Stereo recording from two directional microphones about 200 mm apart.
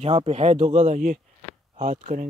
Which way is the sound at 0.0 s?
30° right (ahead or behind).